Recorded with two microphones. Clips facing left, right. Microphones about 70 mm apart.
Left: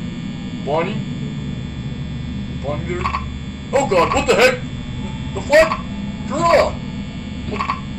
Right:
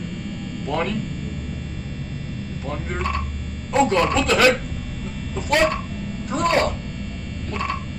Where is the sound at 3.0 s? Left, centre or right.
Left.